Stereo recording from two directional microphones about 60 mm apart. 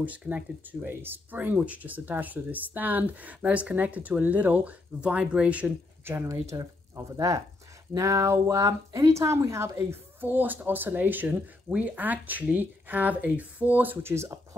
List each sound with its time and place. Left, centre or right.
0.0 s speech: right
0.8 s speech: right; by 5.7 s centre
6.5 s speech: right
9.8 s speech: right
14.0 s speech: right